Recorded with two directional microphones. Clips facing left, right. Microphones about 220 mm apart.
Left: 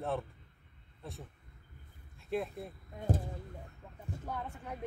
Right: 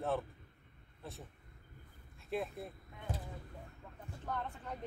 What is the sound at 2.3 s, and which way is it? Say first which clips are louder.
Speech: left 3 dB; centre (ahead or behind).